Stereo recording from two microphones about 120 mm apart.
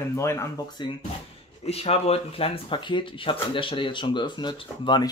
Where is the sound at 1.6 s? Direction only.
60° left (ahead or behind); by 5.1 s 40° left (ahead or behind).